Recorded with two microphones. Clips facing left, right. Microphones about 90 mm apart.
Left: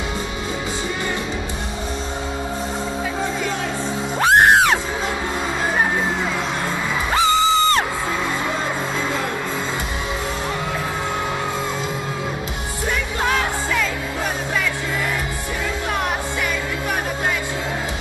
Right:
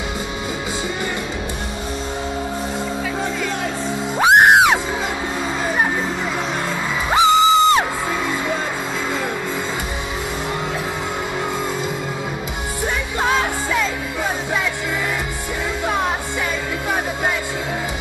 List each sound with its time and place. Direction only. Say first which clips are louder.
4.2 s music: right 2 dB; 15° right (ahead or behind)
7.2 s music: right 4 dB; 15° right (ahead or behind)
13.2 s music: right 2 dB; 20° right (ahead or behind)